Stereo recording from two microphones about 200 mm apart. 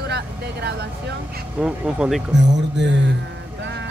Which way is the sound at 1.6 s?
Centre (ahead or behind).